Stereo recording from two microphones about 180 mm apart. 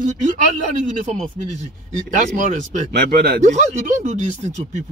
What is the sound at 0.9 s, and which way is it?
A man's voice, 40° right (ahead or behind).